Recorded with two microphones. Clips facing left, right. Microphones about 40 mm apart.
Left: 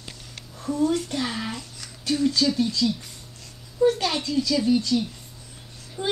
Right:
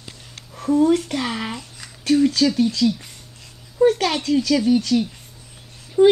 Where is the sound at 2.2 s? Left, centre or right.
Right.